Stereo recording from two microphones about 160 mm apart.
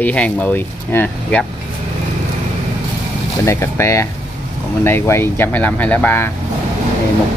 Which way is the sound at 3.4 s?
15° left (ahead or behind).